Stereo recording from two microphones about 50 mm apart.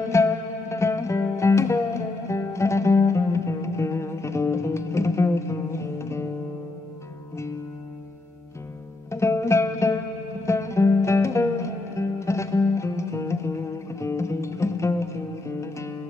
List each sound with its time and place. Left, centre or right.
0.1 s music: left
9.1 s music: left